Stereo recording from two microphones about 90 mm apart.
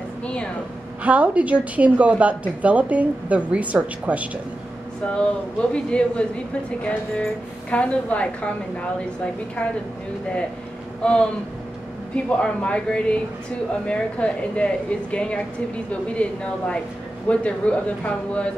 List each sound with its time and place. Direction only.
0.2 s a sound: 10° left (ahead or behind)
1.0 s a woman's voice: 15° right (ahead or behind)
5.0 s a woman's voice: 10° left (ahead or behind)
11.0 s speech: 10° left (ahead or behind)
12.3 s a woman's voice: 10° left (ahead or behind)